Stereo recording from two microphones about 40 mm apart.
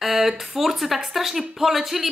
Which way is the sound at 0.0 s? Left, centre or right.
Centre.